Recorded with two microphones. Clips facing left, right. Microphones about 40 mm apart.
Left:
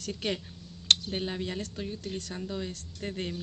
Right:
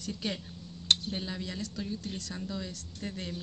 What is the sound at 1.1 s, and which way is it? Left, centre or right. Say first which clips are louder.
Speech: left 4 dB; left.